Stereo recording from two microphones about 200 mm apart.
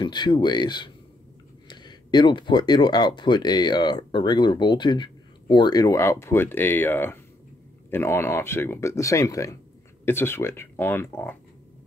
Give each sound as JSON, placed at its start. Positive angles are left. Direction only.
{"t": 0.0, "sound": "speech", "side_deg": 20}